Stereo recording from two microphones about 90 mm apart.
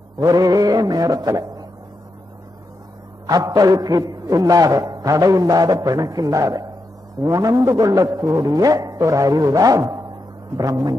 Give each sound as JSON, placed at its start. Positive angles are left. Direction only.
{"t": 0.2, "sound": "mantra", "side_deg": -45}
{"t": 3.3, "sound": "a man's voice", "side_deg": -45}